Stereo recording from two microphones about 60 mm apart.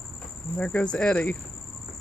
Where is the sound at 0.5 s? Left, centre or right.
Centre.